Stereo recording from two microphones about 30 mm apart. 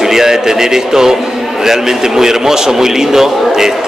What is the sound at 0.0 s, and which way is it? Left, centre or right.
A man's voice, centre.